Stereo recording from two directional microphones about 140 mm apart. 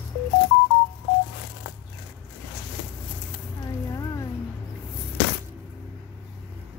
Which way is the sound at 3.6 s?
25° left (ahead or behind).